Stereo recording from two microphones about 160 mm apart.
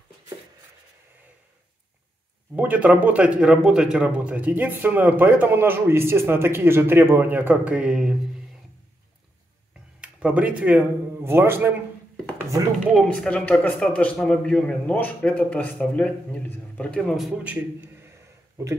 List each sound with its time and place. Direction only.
2.5 s speech: 10° right (ahead or behind)
9.9 s speech: 5° right (ahead or behind)
12.9 s a man's voice: 5° left (ahead or behind)
18.6 s speech: 20° right (ahead or behind)